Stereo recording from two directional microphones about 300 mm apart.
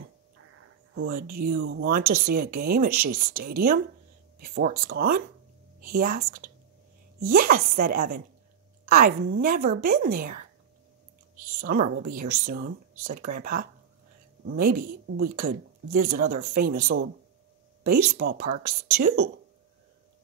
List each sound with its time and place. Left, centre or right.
1.2 s a woman's voice: right
11.6 s a woman's voice: right